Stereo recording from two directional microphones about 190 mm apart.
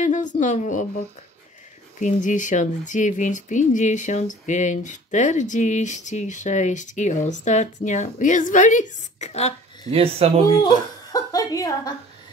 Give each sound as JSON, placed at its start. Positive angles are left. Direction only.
{"t": 0.0, "sound": "a sound", "side_deg": 40}
{"t": 0.4, "sound": "speech", "side_deg": 40}
{"t": 2.0, "sound": "speech", "side_deg": 40}
{"t": 9.8, "sound": "speech", "side_deg": -30}
{"t": 10.6, "sound": "a woman's voice", "side_deg": 20}